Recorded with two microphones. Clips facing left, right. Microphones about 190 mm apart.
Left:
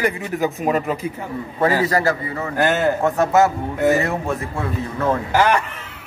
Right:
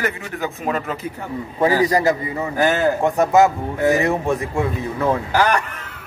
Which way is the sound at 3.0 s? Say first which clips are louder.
Right 3 dB; 15° right (ahead or behind).